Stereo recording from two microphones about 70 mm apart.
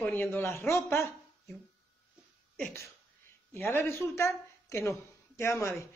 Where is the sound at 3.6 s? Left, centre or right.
Left.